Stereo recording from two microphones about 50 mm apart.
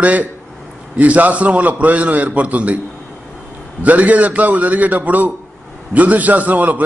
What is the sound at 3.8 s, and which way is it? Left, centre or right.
A man's voice, right.